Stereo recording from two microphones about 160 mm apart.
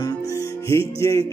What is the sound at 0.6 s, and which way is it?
Music, 15° left (ahead or behind).